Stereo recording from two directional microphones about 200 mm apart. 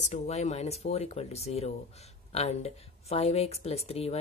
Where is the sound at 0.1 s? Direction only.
35° left (ahead or behind).